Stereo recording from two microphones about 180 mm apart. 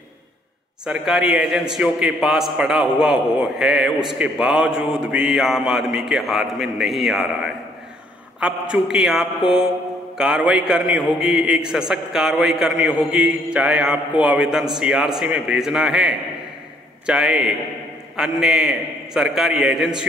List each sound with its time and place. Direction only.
0.8 s a man's voice: 5° right (ahead or behind)